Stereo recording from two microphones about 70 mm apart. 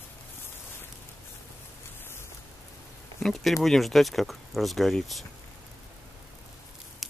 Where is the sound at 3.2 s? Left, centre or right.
Centre.